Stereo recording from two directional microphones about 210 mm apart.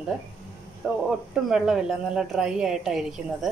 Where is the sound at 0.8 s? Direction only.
5° right (ahead or behind).